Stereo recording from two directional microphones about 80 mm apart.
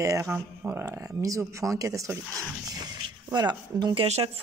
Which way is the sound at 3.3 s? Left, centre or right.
Right.